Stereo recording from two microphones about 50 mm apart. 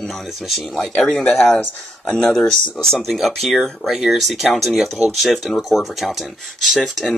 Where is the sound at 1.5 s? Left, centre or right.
Left.